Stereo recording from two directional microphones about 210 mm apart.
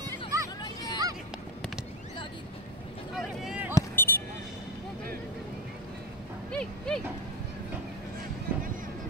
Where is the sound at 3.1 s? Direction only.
5° right (ahead or behind).